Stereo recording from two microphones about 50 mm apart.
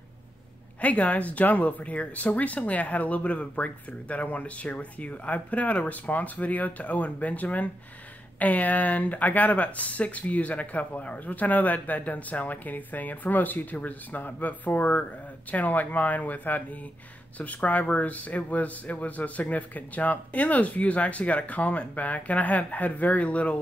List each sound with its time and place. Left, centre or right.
0.7 s speech: left